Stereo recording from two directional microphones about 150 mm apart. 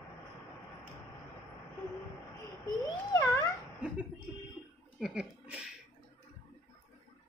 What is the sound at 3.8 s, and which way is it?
Chuckle, 5° right (ahead or behind).